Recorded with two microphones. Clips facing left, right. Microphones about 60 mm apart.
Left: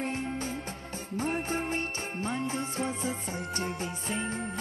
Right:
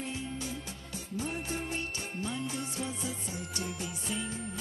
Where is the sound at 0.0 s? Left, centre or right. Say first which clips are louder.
Left 5 dB; left.